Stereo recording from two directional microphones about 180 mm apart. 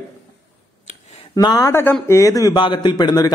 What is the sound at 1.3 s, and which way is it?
A man's voice, 20° left (ahead or behind).